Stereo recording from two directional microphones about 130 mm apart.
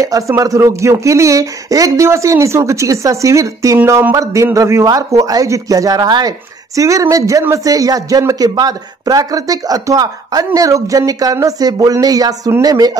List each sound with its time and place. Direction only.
0.0 s speech: 25° right (ahead or behind)